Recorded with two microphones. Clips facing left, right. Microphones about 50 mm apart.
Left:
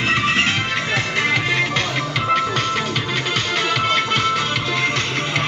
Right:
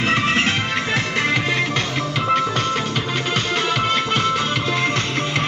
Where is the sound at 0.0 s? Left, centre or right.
Centre.